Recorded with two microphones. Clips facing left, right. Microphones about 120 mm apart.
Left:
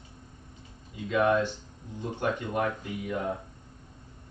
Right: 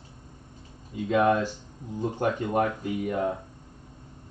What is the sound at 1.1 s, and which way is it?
Speech, 35° right (ahead or behind).